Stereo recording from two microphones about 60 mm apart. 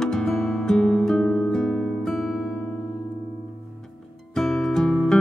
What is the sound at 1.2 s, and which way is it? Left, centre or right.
Music, left.